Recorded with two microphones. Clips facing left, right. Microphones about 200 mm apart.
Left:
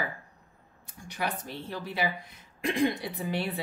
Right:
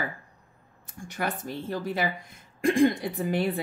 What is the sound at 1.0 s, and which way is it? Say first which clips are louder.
Speech: right 2 dB; 50° right (ahead or behind).